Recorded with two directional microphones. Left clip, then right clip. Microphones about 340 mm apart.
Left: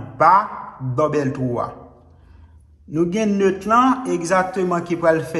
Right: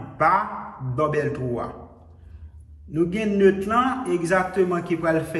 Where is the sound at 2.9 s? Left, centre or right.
Centre.